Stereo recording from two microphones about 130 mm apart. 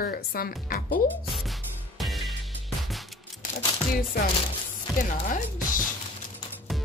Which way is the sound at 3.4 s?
90° left.